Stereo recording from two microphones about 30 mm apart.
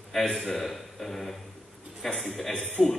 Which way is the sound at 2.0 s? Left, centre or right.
Left.